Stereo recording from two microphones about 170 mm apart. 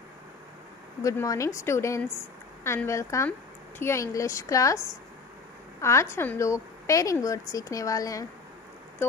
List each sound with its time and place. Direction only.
1.0 s a woman's voice: 20° left (ahead or behind)
5.8 s a woman's voice: 15° left (ahead or behind)